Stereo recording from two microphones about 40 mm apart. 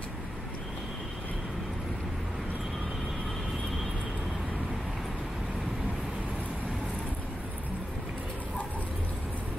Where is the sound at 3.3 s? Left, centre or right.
Centre.